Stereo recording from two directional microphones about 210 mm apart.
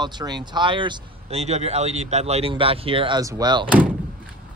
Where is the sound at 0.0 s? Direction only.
20° right (ahead or behind).